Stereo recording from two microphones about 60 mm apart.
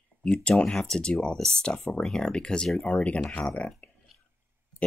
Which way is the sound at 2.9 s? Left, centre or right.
Left.